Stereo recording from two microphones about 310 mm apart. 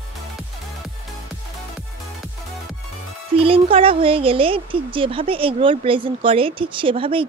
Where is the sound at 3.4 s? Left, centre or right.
Centre.